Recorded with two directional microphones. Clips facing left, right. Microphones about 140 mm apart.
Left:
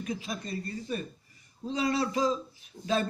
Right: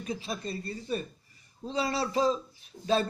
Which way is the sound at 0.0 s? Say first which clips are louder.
Right 1 dB; 30° right (ahead or behind).